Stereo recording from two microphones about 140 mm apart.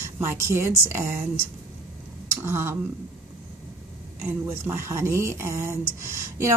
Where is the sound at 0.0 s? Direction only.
20° right (ahead or behind).